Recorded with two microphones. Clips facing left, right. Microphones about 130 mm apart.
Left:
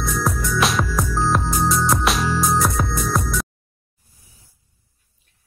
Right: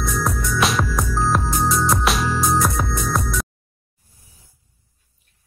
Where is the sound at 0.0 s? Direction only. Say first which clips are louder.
Even; centre (ahead or behind).